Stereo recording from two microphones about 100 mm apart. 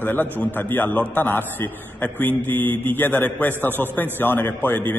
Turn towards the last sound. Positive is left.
turn(degrees=15)  # may be behind; listen again after turning